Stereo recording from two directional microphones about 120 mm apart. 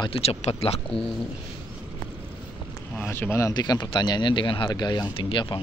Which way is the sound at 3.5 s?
35° left (ahead or behind).